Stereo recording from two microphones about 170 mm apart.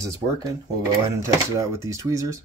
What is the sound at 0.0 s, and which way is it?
Speech, 20° right (ahead or behind).